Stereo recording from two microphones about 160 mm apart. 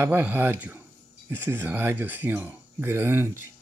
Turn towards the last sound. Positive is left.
turn(degrees=-15)  # may be behind; listen again after turning